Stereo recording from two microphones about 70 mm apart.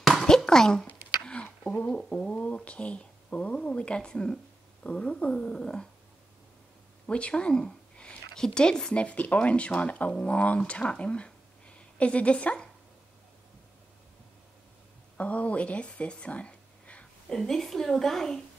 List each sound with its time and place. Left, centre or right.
0.0 s a sound: centre
1.2 s speech: centre
7.1 s speech: centre
15.1 s speech: left
17.3 s a woman's voice: centre